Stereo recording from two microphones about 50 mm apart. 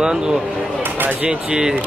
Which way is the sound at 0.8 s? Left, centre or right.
Right.